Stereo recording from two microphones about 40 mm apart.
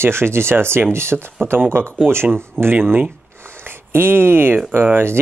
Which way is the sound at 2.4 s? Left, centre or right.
Right.